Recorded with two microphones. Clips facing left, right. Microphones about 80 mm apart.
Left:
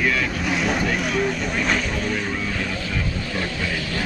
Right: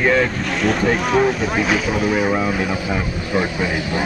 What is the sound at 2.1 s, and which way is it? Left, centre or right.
Speech, right.